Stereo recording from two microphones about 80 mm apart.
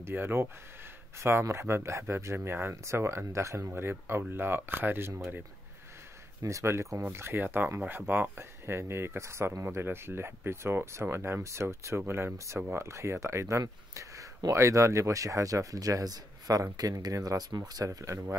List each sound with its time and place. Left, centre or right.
0.0 s speech: right
6.4 s speech: right